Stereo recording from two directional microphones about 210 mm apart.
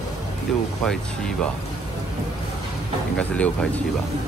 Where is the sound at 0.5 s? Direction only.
Centre (ahead or behind).